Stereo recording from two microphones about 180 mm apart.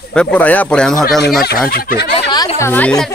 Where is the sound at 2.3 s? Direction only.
10° left (ahead or behind).